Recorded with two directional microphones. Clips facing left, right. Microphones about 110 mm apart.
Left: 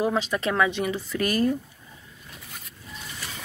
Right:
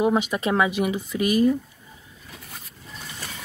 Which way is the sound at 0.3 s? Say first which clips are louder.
Right 1 dB; 20° right (ahead or behind).